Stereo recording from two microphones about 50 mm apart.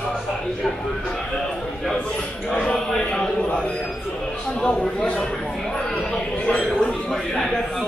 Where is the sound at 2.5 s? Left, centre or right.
Centre.